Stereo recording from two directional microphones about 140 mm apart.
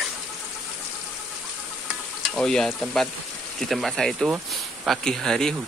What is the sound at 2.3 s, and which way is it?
Speech, 5° left (ahead or behind).